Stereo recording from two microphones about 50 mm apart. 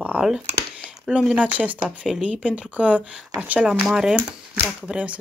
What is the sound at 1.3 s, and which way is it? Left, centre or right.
Speech, right.